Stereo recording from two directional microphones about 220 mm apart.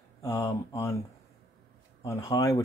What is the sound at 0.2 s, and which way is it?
Speech, 15° left (ahead or behind).